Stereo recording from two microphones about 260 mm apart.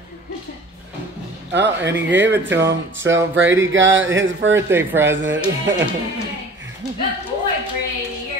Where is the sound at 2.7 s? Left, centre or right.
Right.